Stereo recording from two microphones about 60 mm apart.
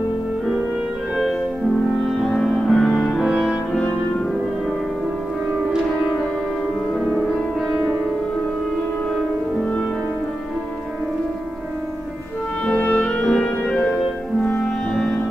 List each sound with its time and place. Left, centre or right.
2.1 s music: centre
12.6 s music: left